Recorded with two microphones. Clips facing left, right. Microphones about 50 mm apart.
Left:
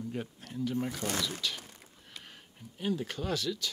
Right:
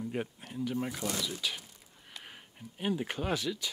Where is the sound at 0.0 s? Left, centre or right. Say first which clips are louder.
Right 2 dB; right.